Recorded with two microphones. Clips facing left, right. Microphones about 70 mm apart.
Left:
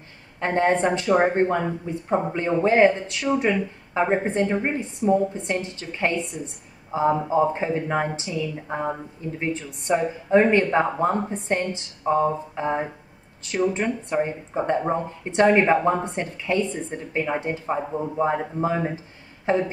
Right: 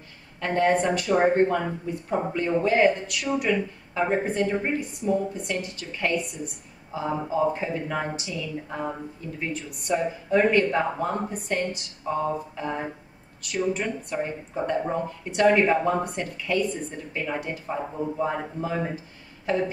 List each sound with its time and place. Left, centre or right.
0.4 s a woman's voice: left